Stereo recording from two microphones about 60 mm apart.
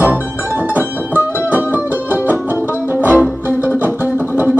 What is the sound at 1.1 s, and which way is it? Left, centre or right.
Music, right.